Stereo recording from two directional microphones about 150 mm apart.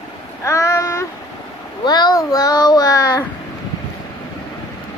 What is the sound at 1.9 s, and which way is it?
A child's voice, 30° left (ahead or behind).